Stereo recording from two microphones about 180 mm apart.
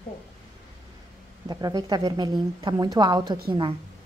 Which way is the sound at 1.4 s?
20° right (ahead or behind).